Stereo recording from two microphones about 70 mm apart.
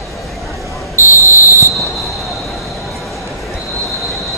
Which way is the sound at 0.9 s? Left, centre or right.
Left.